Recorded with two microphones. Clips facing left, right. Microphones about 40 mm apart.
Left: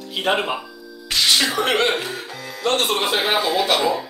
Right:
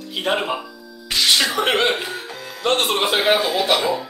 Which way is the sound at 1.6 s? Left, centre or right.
Right.